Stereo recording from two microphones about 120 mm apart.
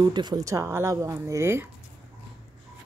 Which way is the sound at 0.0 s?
35° right (ahead or behind).